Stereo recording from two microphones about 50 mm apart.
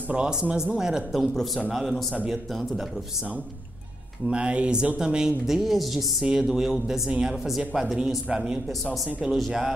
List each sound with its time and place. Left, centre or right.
0.1 s a woman's voice: centre
1.1 s speech: centre
4.3 s a woman's voice: right; by 6.0 s centre
6.2 s a woman's voice: centre
8.3 s a woman's voice: centre